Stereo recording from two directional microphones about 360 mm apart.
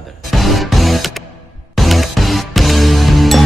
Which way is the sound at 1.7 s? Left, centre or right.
Centre.